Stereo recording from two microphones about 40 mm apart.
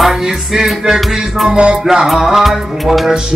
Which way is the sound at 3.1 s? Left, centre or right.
Centre.